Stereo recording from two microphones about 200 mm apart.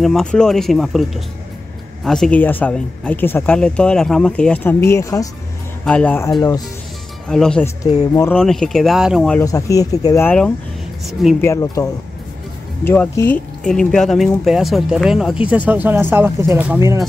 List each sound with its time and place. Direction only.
0.0 s speech: centre (ahead or behind)
9.4 s speech: 15° left (ahead or behind); by 17.0 s 10° right (ahead or behind)